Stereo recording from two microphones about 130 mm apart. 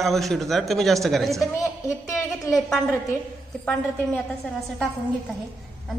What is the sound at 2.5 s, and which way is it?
Speech, 25° left (ahead or behind).